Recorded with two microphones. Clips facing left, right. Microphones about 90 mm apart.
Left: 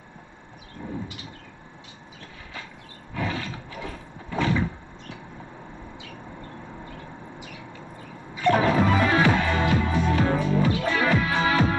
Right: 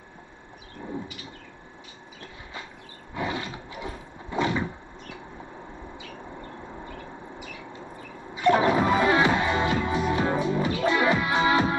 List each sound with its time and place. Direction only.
3.2 s roar: 15° right (ahead or behind)
8.4 s music: 15° right (ahead or behind)